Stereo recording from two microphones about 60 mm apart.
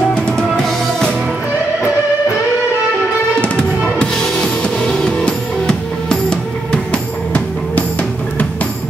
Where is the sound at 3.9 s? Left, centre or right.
Centre.